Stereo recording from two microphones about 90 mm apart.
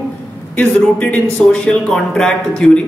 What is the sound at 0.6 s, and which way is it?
Speech, 15° left (ahead or behind).